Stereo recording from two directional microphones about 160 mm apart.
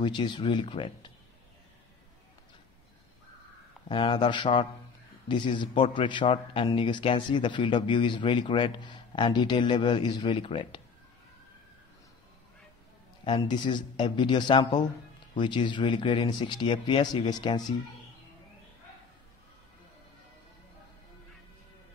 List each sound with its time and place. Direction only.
0.0 s a man's voice: 30° left (ahead or behind)
3.9 s a man's voice: 30° left (ahead or behind)
13.2 s a man's voice: 30° left (ahead or behind)